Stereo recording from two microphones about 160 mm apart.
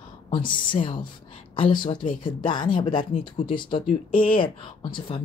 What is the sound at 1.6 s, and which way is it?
Speech, 30° left (ahead or behind).